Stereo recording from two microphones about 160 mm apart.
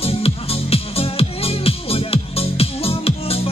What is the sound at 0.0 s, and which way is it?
Music, 40° left (ahead or behind).